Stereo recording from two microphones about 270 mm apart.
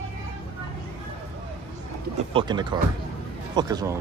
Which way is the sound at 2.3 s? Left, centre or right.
Centre.